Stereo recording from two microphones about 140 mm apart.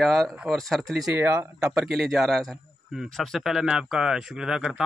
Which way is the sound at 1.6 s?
Centre (ahead or behind).